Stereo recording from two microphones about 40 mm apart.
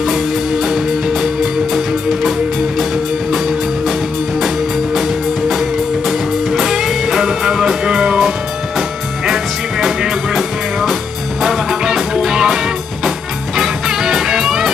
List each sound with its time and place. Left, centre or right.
5.5 s music: centre
13.6 s music: centre